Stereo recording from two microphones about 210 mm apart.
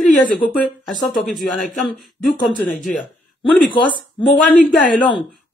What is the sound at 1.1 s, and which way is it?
Speech, 40° left (ahead or behind).